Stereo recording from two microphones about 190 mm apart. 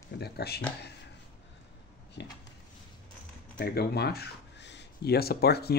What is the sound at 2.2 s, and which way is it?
Speech, 65° left (ahead or behind).